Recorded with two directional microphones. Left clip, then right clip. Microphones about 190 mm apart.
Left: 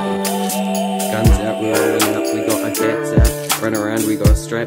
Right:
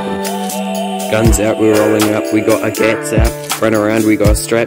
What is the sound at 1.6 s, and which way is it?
Music, centre (ahead or behind).